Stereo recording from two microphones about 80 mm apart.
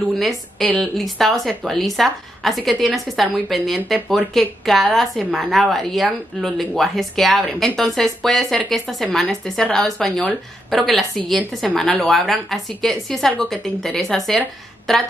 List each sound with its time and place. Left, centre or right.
0.2 s a woman's voice: centre